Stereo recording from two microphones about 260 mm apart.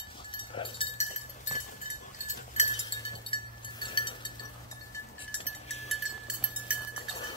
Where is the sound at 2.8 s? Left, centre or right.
Centre.